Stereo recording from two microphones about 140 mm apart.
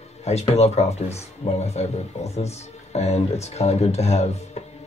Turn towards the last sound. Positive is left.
turn(degrees=50)  # may be behind; listen again after turning